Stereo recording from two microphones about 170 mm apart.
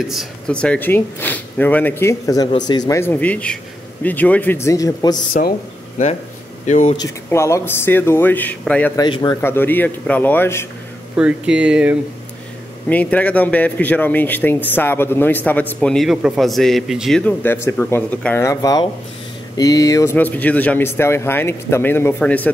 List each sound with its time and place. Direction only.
0.0 s speech: centre (ahead or behind); by 5.2 s 20° left (ahead or behind)
6.6 s speech: 45° left (ahead or behind)
7.2 s speech: 15° left (ahead or behind)
8.9 s speech: 25° left (ahead or behind)
11.1 s speech: 5° right (ahead or behind)
12.9 s speech: 10° left (ahead or behind)